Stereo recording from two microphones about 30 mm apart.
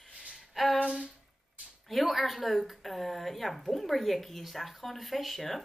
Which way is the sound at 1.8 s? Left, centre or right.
Centre.